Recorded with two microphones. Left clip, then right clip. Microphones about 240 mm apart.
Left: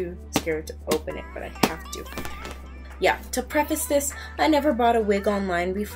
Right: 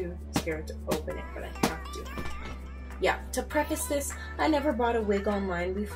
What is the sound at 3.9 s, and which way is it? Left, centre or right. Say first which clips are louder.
A woman's voice: left 8 dB; centre.